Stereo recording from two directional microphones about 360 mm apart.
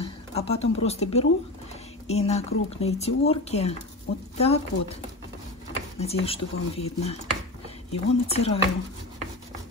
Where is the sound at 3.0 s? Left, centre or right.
Centre.